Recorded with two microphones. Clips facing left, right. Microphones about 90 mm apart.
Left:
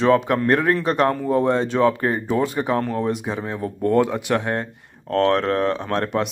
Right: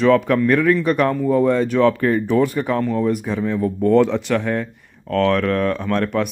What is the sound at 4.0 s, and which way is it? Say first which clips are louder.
Speech: right 3 dB; 10° left (ahead or behind).